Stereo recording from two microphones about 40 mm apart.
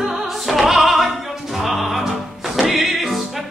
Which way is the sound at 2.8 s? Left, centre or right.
Centre.